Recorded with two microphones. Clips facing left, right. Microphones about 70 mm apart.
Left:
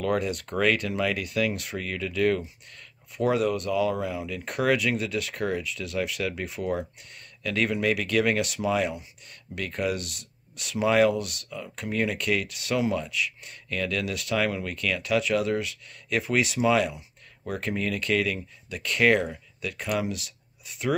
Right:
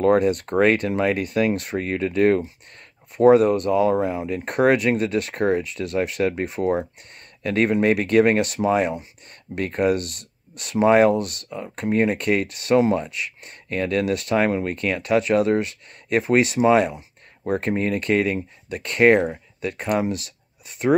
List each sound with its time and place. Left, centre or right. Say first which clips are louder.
0.0 s speech: right 9 dB; right